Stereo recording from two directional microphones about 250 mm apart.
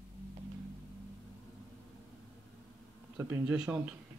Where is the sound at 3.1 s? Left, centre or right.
Centre.